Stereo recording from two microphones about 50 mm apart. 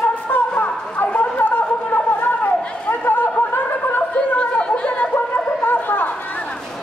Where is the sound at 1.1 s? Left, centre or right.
Left.